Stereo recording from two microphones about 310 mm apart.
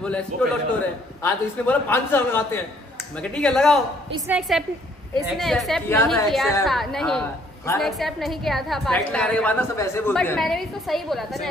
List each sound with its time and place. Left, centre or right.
0.3 s a man's voice: right
1.2 s a man's voice: centre